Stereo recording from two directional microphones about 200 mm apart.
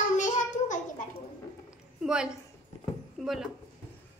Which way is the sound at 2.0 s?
5° right (ahead or behind).